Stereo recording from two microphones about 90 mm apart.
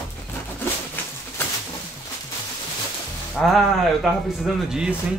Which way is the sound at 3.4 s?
5° left (ahead or behind).